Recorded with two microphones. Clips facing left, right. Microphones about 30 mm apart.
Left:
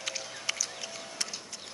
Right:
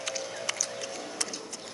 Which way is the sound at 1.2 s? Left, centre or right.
Centre.